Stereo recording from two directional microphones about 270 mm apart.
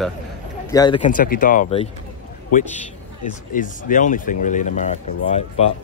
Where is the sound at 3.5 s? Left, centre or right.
Left.